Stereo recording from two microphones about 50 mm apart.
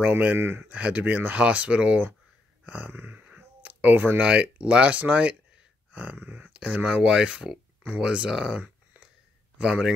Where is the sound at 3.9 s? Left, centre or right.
Right.